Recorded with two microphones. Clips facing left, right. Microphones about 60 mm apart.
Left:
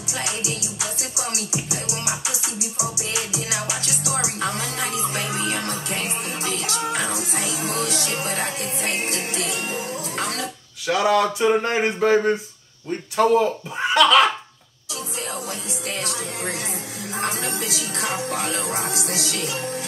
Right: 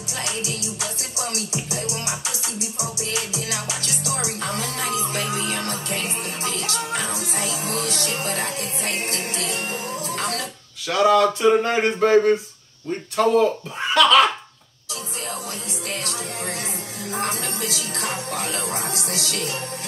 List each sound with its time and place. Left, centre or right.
1.2 s music: left
3.0 s music: left
10.1 s a sound: left
10.9 s a sound: centre
17.3 s music: right
18.1 s music: left